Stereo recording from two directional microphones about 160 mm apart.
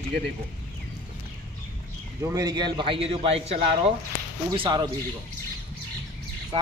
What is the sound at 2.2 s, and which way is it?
A man's voice, 25° right (ahead or behind).